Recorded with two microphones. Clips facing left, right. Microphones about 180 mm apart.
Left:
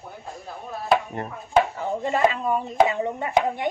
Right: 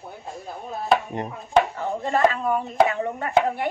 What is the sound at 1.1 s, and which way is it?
Chopping, 20° right (ahead or behind).